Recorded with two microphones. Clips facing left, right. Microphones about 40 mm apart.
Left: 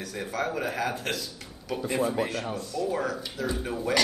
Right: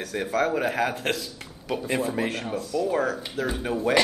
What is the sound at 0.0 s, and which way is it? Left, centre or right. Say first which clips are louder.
Speech: right 6 dB; right.